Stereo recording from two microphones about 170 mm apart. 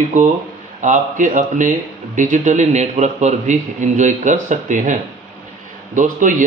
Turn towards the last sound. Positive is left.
turn(degrees=-50)  # may be behind; listen again after turning